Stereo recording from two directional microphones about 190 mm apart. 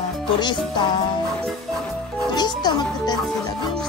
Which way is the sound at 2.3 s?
20° left (ahead or behind).